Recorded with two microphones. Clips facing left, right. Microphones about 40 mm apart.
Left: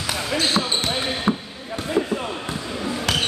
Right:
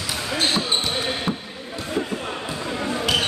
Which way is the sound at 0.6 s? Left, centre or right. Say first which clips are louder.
Left 3 dB; left.